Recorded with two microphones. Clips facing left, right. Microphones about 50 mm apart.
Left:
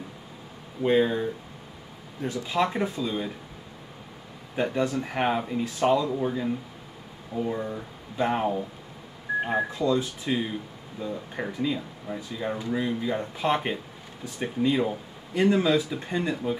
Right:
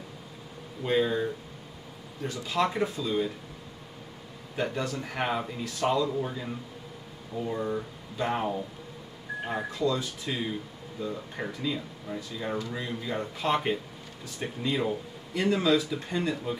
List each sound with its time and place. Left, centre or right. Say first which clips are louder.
0.8 s speech: left 4 dB; centre
2.2 s speech: left 2 dB; centre
4.6 s speech: left 5 dB; centre